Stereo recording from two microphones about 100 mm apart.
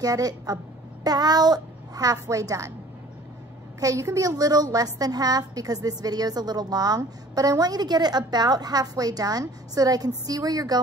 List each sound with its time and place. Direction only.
0.0 s a woman's voice: 35° right (ahead or behind)
3.8 s a woman's voice: 35° right (ahead or behind)